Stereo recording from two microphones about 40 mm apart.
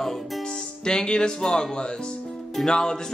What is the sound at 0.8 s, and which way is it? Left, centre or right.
Speech, centre.